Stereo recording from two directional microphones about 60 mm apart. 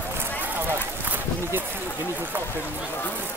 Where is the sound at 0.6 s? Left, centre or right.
Right.